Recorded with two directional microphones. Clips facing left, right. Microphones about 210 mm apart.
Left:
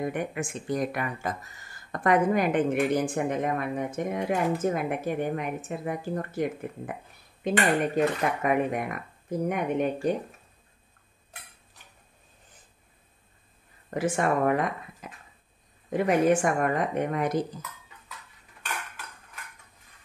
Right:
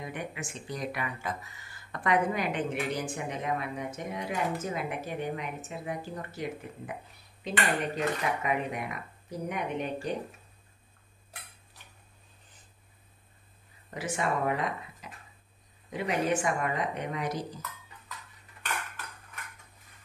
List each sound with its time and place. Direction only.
0.0 s speech: 50° left (ahead or behind)
13.8 s speech: 50° left (ahead or behind)